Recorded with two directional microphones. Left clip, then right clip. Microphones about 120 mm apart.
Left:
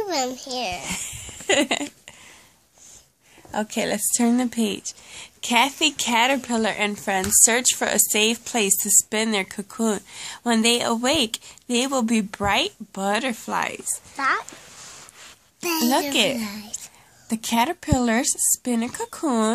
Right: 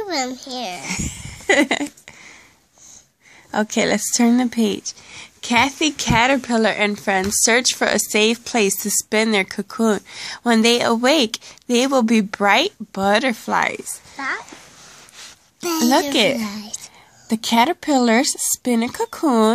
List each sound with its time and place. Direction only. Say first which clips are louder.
0.0 s a child's voice: right 1 dB; 10° right (ahead or behind)
0.8 s a sound: right 4 dB; 30° right (ahead or behind)
3.5 s speech: right 6 dB; 40° right (ahead or behind)
6.9 s speech: right 4 dB; 25° right (ahead or behind); by 13.7 s 40° right (ahead or behind)
14.1 s speech: left 3 dB; centre (ahead or behind)
15.6 s speech: right 3 dB; 25° right (ahead or behind)
16.1 s a woman's voice: right 4 dB; 45° right (ahead or behind)
16.3 s speech: right 4 dB; 20° right (ahead or behind)
17.3 s a woman's voice: right 5 dB; 45° right (ahead or behind)